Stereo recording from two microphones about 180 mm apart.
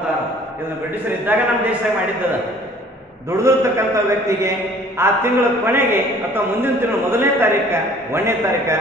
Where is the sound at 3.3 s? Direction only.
15° right (ahead or behind).